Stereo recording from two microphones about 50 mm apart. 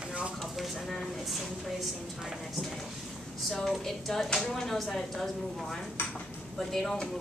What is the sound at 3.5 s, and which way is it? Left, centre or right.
Speech, centre.